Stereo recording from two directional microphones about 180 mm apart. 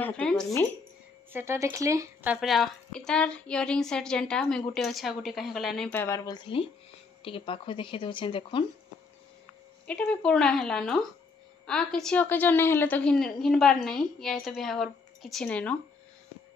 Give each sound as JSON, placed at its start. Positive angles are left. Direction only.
{"t": 0.0, "sound": "a woman's voice", "side_deg": 5}
{"t": 1.3, "sound": "speech", "side_deg": -15}
{"t": 2.3, "sound": "a woman's voice", "side_deg": 0}
{"t": 9.8, "sound": "a woman's voice", "side_deg": 5}